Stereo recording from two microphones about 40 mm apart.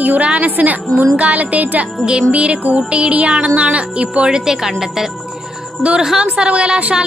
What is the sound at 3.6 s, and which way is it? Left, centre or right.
Speech, right.